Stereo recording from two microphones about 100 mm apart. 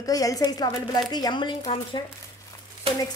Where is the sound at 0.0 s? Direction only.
35° left (ahead or behind).